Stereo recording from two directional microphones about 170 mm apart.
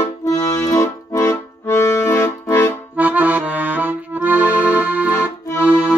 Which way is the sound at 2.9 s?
10° right (ahead or behind).